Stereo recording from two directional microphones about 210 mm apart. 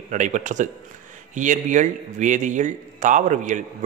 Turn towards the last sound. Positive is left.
turn(degrees=-35)  # may be behind; listen again after turning